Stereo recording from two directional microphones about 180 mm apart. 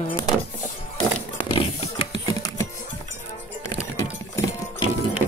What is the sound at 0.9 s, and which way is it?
Music, 30° left (ahead or behind).